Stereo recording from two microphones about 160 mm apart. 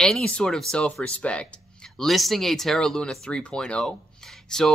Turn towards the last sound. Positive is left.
turn(degrees=5)  # may be behind; listen again after turning